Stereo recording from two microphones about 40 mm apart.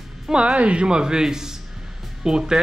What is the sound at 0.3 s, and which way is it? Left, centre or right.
Speech, right.